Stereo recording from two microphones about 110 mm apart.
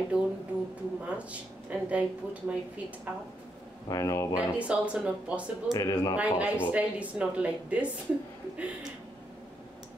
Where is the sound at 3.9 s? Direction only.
30° left (ahead or behind).